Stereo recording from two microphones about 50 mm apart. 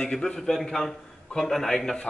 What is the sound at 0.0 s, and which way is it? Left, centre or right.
A man's voice, centre.